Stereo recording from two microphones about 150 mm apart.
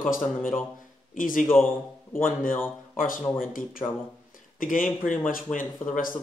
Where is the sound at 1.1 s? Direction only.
65° left (ahead or behind).